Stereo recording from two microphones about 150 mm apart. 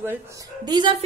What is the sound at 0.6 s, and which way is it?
Speech, 30° right (ahead or behind).